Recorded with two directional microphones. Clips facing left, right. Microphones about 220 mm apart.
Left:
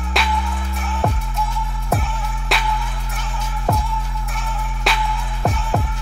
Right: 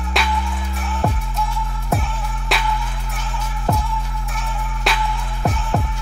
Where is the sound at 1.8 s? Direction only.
Centre (ahead or behind).